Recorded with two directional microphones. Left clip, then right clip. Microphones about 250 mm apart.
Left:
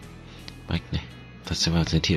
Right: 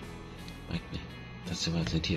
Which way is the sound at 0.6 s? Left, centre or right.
Left.